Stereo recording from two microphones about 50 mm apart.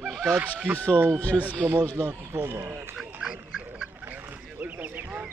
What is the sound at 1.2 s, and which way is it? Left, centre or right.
Speech, left.